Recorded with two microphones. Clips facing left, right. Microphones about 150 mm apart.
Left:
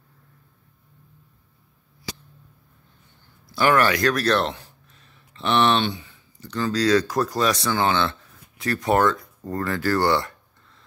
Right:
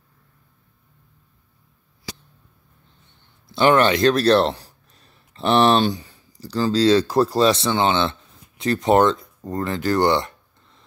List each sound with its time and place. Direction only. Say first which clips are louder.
3.4 s speech: right 3 dB; 25° right (ahead or behind)